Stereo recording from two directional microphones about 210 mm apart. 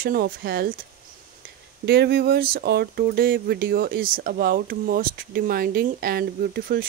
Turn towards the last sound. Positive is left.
turn(degrees=-45)  # may be behind; listen again after turning